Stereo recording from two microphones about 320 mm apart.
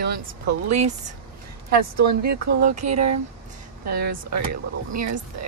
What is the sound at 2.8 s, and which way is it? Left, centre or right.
Speech, right.